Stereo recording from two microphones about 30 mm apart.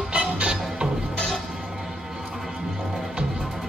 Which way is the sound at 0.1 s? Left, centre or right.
Right.